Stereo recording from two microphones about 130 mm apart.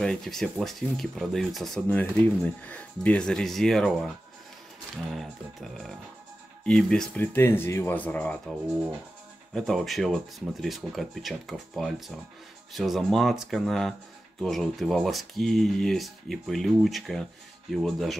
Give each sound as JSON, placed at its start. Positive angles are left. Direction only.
{"t": 0.0, "sound": "speech", "side_deg": 5}
{"t": 5.1, "sound": "speech", "side_deg": 0}
{"t": 7.3, "sound": "speech", "side_deg": 20}
{"t": 9.5, "sound": "speech", "side_deg": 0}